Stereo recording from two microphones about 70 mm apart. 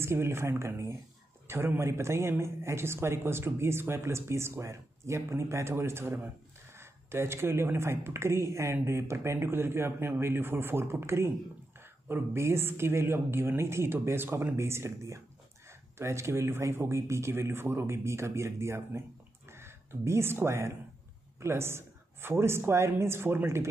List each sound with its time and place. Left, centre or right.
0.0 s speech: right